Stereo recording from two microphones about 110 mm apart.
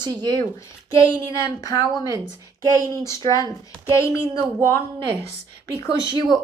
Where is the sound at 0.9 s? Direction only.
30° left (ahead or behind).